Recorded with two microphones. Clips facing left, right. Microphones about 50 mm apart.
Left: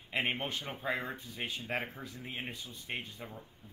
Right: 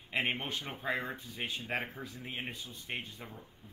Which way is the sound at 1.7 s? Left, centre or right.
Right.